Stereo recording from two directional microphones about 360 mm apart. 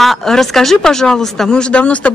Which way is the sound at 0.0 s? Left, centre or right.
Centre.